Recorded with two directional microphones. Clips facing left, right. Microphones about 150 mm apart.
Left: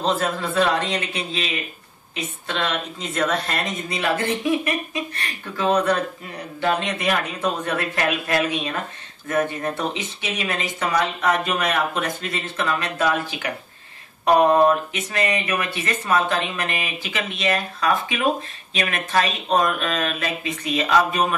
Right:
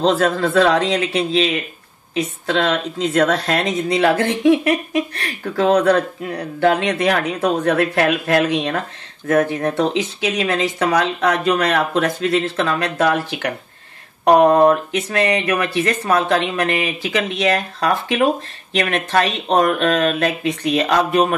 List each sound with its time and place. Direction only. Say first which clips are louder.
0.0 s speech: right 7 dB; 85° right; by 1.6 s 70° right (ahead or behind)
2.1 s a woman's voice: right 8 dB; 90° right; by 8.7 s 70° right (ahead or behind)
9.3 s speech: right 6 dB; 80° right; by 21.4 s 60° right (ahead or behind)